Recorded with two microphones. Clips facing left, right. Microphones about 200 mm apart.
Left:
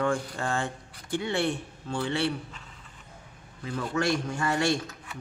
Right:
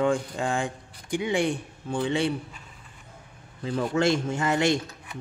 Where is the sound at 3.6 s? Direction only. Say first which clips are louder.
Right 5 dB; 30° right (ahead or behind).